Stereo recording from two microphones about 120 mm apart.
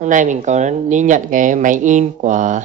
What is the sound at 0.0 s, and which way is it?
Speech, 90° right.